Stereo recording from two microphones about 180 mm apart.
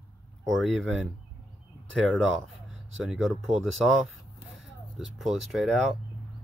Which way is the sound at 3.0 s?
Centre (ahead or behind).